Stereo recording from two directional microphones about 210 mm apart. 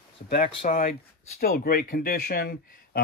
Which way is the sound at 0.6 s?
40° left (ahead or behind).